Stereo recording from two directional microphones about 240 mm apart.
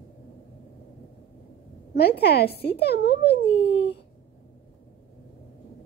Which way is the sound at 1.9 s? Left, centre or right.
Left.